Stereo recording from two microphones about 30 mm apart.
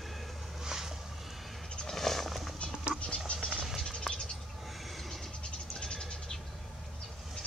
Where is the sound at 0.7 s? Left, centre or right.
Centre.